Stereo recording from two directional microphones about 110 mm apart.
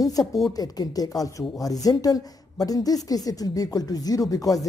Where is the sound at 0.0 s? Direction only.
35° left (ahead or behind).